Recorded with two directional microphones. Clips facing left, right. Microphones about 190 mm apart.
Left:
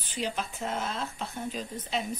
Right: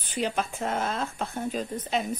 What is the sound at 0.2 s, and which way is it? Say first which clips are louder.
Speech: right 4 dB; 55° right (ahead or behind).